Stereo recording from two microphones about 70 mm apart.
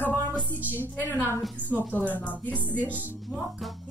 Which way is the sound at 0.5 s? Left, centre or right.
Right.